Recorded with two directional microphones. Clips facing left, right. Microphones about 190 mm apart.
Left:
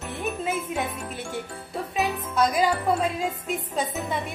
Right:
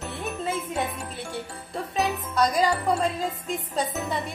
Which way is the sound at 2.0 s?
Centre (ahead or behind).